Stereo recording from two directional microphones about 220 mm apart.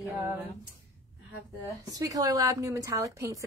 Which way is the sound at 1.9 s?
15° right (ahead or behind).